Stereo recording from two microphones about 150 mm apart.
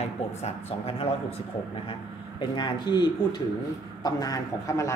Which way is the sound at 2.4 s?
30° left (ahead or behind).